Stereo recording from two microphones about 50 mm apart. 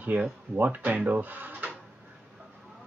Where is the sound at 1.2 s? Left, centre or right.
Right.